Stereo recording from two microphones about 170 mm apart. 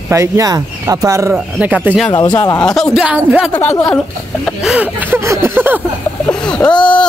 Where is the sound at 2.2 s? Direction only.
15° left (ahead or behind).